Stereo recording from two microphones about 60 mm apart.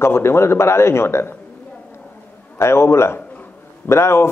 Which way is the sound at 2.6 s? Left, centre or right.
Left.